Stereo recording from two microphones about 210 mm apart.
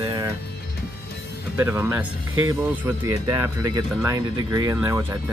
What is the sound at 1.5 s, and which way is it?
Speech, 10° right (ahead or behind).